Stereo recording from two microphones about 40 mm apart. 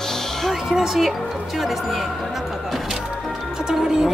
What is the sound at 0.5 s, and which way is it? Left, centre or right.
Speech, centre.